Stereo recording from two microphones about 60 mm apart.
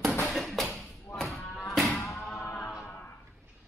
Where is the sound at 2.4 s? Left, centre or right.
Left.